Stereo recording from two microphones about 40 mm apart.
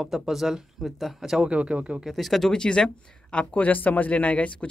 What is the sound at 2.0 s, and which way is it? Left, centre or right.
Speech, centre.